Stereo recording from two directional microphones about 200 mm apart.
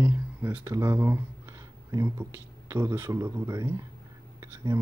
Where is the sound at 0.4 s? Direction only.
10° right (ahead or behind).